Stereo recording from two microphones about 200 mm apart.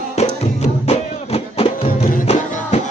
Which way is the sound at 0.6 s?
30° left (ahead or behind).